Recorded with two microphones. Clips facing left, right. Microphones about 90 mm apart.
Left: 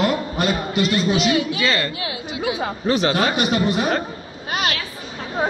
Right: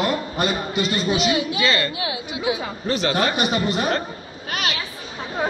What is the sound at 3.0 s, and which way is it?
Speech, 15° left (ahead or behind).